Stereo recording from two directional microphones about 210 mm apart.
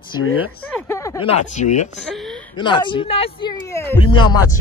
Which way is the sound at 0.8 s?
15° left (ahead or behind).